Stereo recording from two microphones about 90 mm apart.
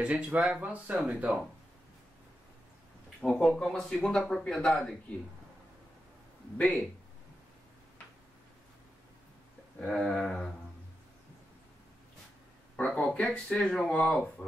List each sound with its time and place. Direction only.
0.0 s speech: 15° right (ahead or behind)
3.3 s speech: 5° left (ahead or behind)
6.6 s speech: 15° left (ahead or behind)
9.8 s a sound: 5° left (ahead or behind)
12.7 s speech: 10° left (ahead or behind)